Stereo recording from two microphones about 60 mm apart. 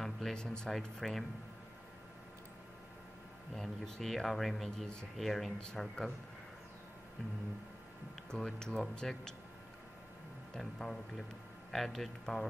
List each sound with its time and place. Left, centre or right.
0.0 s speech: centre
3.5 s speech: centre
8.3 s speech: centre
10.5 s speech: centre